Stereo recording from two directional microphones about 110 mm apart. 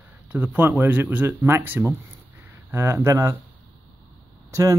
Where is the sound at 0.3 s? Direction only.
15° right (ahead or behind).